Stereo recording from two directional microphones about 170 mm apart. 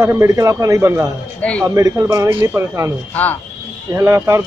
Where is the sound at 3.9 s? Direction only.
15° right (ahead or behind).